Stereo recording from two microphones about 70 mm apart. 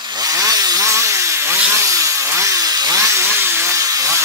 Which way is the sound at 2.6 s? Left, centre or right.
Right.